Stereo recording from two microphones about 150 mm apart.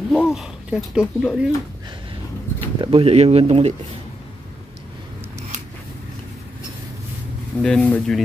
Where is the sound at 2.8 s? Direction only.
40° right (ahead or behind).